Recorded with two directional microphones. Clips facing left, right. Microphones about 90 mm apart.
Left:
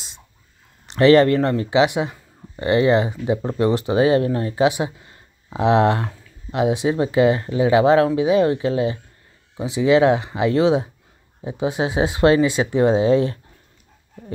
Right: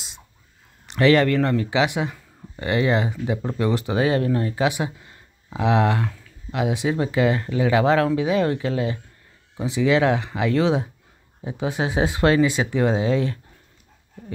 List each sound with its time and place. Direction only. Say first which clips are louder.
0.8 s speech: left 4 dB; 30° left (ahead or behind)